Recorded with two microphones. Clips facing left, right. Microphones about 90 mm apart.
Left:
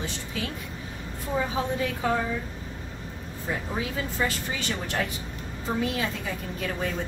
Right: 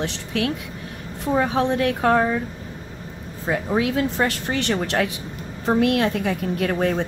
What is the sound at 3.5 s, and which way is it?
Speech, 85° right.